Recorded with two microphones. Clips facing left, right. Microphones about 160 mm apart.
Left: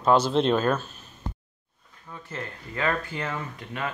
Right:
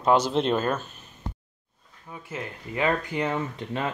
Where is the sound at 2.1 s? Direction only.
10° right (ahead or behind).